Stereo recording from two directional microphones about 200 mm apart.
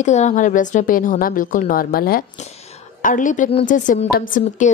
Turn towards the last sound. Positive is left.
turn(degrees=40)  # may be behind; listen again after turning